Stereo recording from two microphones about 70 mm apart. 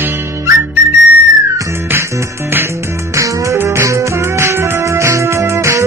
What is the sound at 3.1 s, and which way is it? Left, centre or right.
Music, right.